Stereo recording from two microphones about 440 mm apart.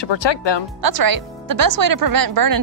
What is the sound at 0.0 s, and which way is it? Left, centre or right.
Speech, left.